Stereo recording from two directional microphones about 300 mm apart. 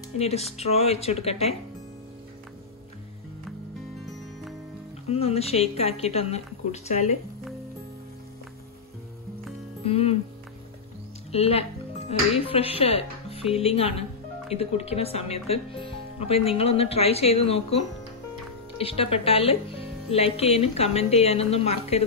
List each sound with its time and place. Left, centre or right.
0.2 s speech: left
5.0 s speech: left
9.8 s speech: centre
11.3 s speech: centre